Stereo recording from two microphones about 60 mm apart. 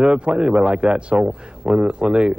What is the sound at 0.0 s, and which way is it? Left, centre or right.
A man's voice, centre.